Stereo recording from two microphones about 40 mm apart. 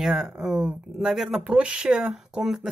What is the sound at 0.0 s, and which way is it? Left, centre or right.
Speech, centre.